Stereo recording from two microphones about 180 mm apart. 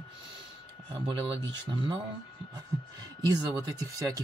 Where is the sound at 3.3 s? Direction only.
20° right (ahead or behind).